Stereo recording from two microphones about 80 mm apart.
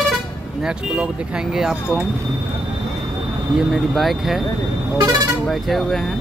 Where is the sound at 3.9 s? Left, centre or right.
Centre.